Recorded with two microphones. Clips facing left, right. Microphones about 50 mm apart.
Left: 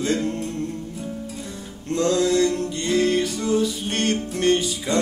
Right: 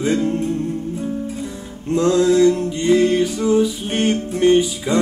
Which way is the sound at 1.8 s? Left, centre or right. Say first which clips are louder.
Right 5 dB; centre.